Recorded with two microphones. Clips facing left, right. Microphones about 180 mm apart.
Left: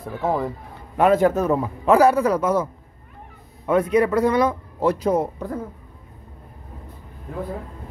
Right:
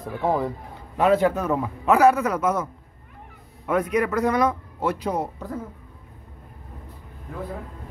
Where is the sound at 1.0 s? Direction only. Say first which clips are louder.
Left 3 dB; 50° left (ahead or behind); by 2.6 s 30° left (ahead or behind).